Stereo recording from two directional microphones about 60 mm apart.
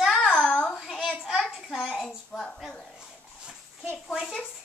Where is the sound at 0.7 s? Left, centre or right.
Centre.